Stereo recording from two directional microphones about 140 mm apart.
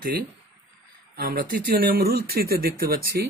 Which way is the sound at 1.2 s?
90° right.